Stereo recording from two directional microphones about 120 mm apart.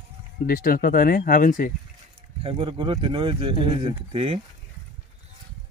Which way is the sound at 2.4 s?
50° right (ahead or behind).